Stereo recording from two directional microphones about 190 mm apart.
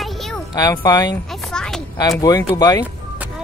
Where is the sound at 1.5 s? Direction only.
5° left (ahead or behind).